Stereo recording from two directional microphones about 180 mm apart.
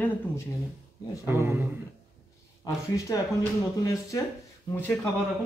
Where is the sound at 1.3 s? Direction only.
15° right (ahead or behind).